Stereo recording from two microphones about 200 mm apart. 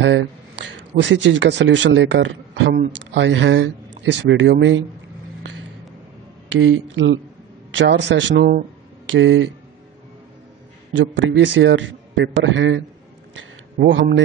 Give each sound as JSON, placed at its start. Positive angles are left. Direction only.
{"t": 0.9, "sound": "a man's voice", "side_deg": -65}
{"t": 6.5, "sound": "a man's voice", "side_deg": -70}
{"t": 10.9, "sound": "a man's voice", "side_deg": -70}